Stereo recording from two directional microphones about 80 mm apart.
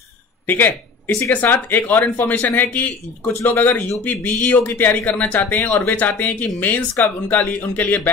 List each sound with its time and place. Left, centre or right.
0.5 s speech: left